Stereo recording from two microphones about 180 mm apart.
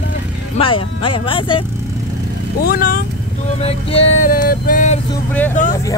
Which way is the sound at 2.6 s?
55° left (ahead or behind).